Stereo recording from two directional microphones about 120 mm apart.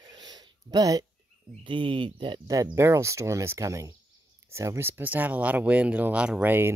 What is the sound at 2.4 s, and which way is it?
Speech, 25° right (ahead or behind).